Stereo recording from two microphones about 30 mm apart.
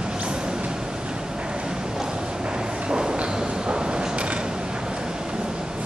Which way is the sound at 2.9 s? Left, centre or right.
Right.